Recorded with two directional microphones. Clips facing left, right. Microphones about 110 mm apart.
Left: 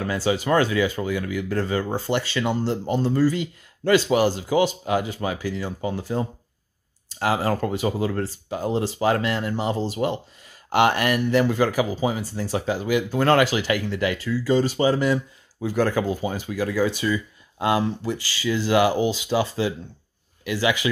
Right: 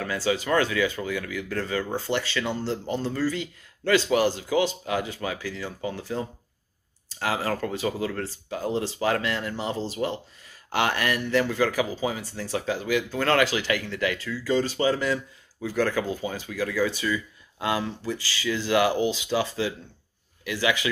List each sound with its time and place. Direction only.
0.0 s speech: 20° left (ahead or behind)
2.4 s speech: 50° left (ahead or behind)
2.9 s speech: 15° left (ahead or behind)
7.3 s speech: 25° left (ahead or behind); by 19.1 s 10° left (ahead or behind)
20.4 s speech: 15° left (ahead or behind)